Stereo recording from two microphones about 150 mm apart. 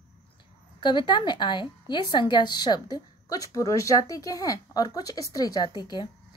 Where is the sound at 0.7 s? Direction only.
30° left (ahead or behind).